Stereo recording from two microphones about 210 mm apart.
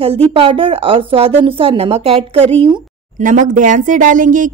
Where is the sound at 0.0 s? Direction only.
30° right (ahead or behind).